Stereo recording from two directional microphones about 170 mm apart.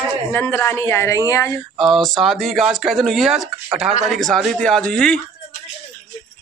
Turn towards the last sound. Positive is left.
turn(degrees=5)  # may be behind; listen again after turning